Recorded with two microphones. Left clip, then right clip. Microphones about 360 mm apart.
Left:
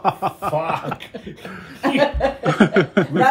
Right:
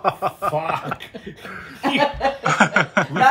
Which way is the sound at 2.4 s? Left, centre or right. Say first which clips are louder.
Right 1 dB; centre.